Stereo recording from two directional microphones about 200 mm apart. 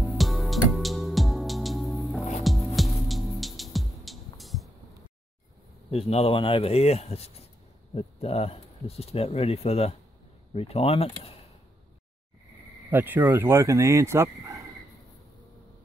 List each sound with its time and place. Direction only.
0.0 s music: centre (ahead or behind)
5.9 s speech: 30° left (ahead or behind)
12.9 s speech: 10° right (ahead or behind)